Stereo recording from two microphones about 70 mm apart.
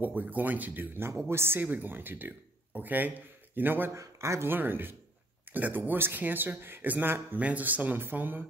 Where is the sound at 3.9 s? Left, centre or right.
Right.